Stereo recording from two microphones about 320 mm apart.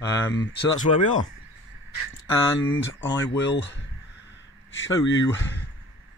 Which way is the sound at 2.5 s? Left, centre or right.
Left.